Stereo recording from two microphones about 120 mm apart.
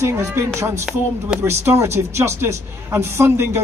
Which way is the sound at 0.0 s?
20° right (ahead or behind).